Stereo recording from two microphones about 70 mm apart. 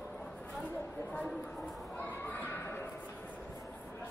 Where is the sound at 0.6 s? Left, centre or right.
Centre.